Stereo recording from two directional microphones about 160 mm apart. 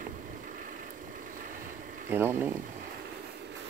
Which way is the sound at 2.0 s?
15° right (ahead or behind).